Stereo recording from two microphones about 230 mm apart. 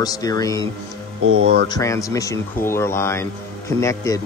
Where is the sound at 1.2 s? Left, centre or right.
Right.